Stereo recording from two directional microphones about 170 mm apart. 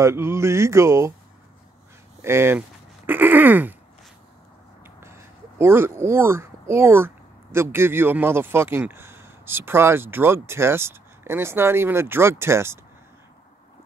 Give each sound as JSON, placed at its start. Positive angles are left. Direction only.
{"t": 0.0, "sound": "speech", "side_deg": -15}
{"t": 2.2, "sound": "speech", "side_deg": -15}
{"t": 5.0, "sound": "speech", "side_deg": -15}